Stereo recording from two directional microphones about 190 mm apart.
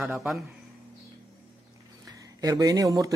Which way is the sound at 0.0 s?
10° right (ahead or behind).